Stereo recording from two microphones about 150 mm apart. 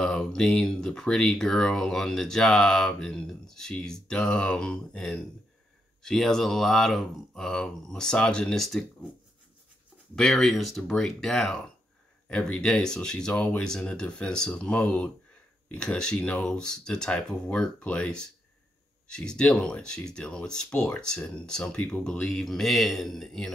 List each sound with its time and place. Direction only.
0.0 s speech: 5° left (ahead or behind)
10.1 s speech: 5° left (ahead or behind)